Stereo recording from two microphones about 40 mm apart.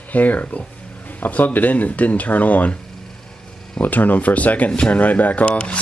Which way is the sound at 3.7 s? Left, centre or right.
Left.